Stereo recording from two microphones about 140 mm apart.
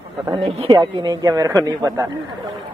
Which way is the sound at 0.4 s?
45° right (ahead or behind).